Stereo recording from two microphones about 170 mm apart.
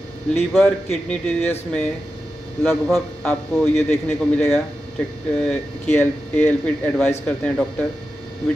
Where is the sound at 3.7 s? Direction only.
15° left (ahead or behind).